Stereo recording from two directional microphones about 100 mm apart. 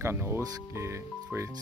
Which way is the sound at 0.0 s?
25° right (ahead or behind).